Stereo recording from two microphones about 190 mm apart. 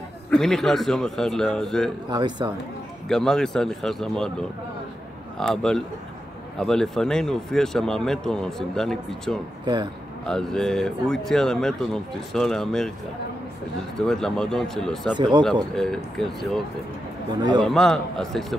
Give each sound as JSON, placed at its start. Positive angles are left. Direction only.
{"t": 0.3, "sound": "speech", "side_deg": 0}
{"t": 2.0, "sound": "speech", "side_deg": -20}
{"t": 3.1, "sound": "speech", "side_deg": 5}
{"t": 13.9, "sound": "speech", "side_deg": 0}
{"t": 15.1, "sound": "speech", "side_deg": -25}
{"t": 15.7, "sound": "speech", "side_deg": 0}
{"t": 17.4, "sound": "speech", "side_deg": -25}
{"t": 17.6, "sound": "speech", "side_deg": 0}